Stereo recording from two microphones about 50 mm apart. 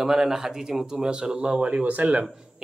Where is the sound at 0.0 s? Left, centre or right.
Centre.